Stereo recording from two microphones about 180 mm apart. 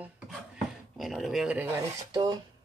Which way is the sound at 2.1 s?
25° right (ahead or behind).